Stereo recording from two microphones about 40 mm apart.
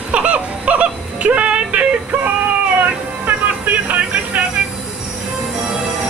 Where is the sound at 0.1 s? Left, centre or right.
Right.